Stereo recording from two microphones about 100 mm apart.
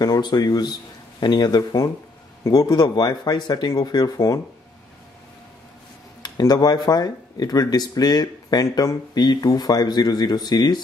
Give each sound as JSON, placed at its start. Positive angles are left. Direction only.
{"t": 0.0, "sound": "speech", "side_deg": 40}
{"t": 6.2, "sound": "speech", "side_deg": 40}